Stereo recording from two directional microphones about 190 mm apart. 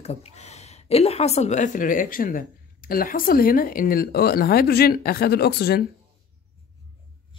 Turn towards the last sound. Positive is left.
turn(degrees=55)  # may be behind; listen again after turning